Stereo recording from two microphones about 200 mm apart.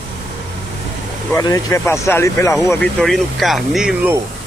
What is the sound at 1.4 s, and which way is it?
Speech, 15° left (ahead or behind).